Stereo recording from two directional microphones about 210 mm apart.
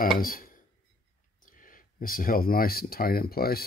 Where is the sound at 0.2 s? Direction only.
40° left (ahead or behind).